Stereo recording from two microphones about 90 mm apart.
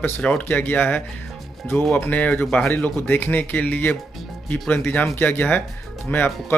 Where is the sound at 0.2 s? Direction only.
15° left (ahead or behind).